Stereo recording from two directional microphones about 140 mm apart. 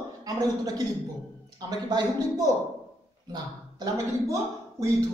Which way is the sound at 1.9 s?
30° right (ahead or behind).